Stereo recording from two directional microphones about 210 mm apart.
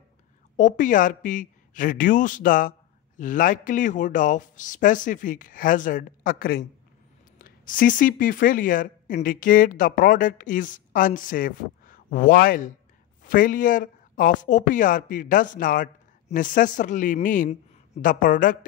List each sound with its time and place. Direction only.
0.6 s speech: 40° left (ahead or behind)